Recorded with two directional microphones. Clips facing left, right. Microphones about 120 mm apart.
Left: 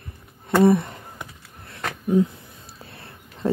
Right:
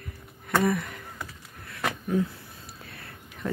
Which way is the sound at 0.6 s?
30° left (ahead or behind).